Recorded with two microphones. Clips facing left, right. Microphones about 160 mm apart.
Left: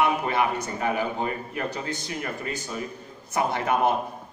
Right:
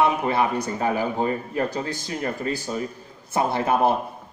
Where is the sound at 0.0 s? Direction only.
25° right (ahead or behind).